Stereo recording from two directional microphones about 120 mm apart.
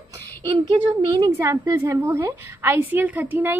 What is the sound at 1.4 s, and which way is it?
A woman's voice, 25° right (ahead or behind).